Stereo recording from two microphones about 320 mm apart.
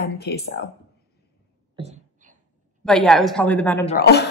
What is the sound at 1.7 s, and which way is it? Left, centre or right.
Beatboxing, right.